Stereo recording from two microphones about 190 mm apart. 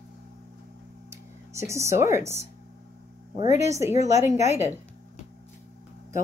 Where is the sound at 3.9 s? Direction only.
35° left (ahead or behind).